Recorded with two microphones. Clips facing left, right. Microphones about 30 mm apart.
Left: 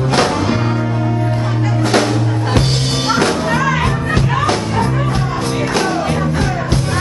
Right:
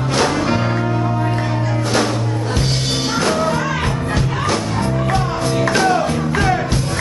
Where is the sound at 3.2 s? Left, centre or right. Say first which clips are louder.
Left 1 dB; left.